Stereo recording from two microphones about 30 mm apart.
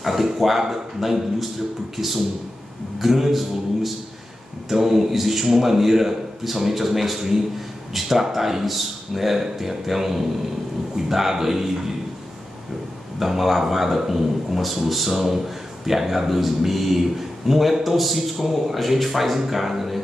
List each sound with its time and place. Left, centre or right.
0.0 s a man's voice: centre
13.2 s a man's voice: centre